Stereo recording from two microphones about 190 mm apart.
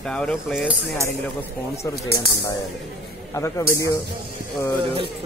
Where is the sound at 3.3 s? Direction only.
15° left (ahead or behind).